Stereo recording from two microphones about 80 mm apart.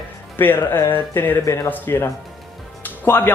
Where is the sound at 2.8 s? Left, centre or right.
Left.